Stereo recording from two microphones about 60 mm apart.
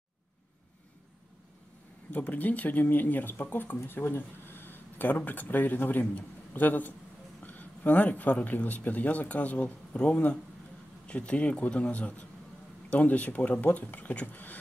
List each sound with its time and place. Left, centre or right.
2.1 s speech: left